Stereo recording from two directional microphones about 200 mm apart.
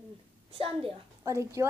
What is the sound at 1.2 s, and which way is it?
Speech, 15° right (ahead or behind).